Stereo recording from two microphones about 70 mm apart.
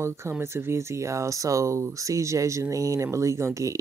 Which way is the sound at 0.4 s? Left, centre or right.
Right.